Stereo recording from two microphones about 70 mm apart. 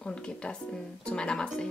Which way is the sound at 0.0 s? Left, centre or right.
Centre.